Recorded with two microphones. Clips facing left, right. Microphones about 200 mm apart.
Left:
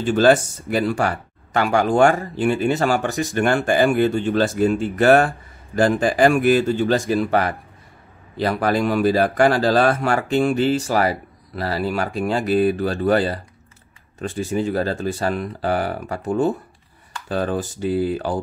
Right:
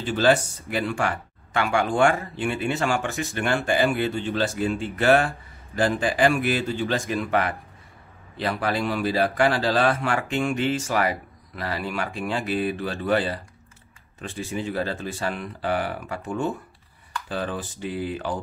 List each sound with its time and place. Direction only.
0.0 s speech: 45° left (ahead or behind)
14.4 s speech: 40° left (ahead or behind)